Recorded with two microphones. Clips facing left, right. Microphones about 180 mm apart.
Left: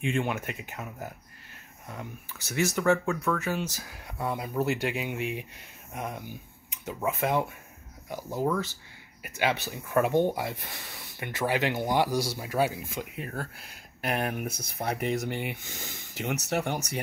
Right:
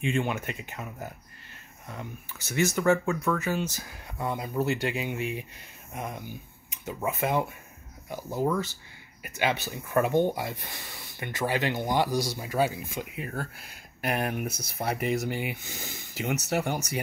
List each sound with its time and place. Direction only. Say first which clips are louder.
0.0 s speech: right 1 dB; centre (ahead or behind)
13.1 s speech: right 1 dB; 5° right (ahead or behind)